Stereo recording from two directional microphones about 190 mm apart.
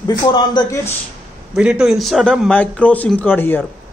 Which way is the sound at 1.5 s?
5° right (ahead or behind).